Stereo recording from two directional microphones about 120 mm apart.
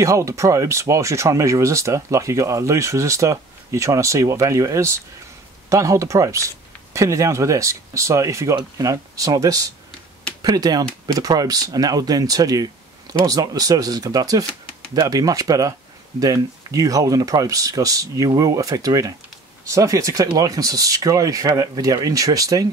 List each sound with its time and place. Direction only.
0.0 s speech: 25° right (ahead or behind)